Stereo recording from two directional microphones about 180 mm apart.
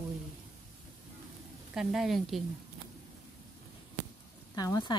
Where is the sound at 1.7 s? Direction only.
Centre (ahead or behind).